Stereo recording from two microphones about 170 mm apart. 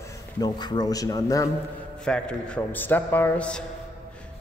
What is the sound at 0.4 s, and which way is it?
A man's voice, 25° left (ahead or behind).